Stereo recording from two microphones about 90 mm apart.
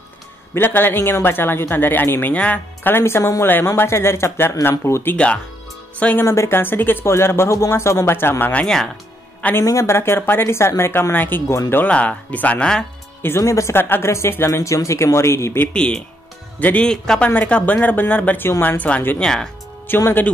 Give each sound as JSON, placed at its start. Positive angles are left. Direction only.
{"t": 0.6, "sound": "speech", "side_deg": 25}
{"t": 5.1, "sound": "speech", "side_deg": 10}
{"t": 6.2, "sound": "speech", "side_deg": 30}
{"t": 9.6, "sound": "speech", "side_deg": 30}
{"t": 13.2, "sound": "speech", "side_deg": 30}
{"t": 15.7, "sound": "speech", "side_deg": 10}
{"t": 19.9, "sound": "speech", "side_deg": 25}